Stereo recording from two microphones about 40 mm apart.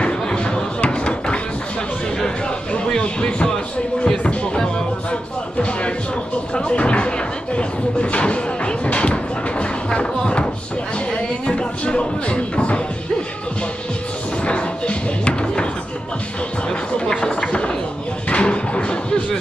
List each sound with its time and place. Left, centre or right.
0.0 s a sound: left
2.7 s a sound: left
3.4 s speech: centre
5.6 s music: left
6.5 s a sound: left
11.1 s music: left
14.4 s music: left
17.0 s run: left
18.3 s music: left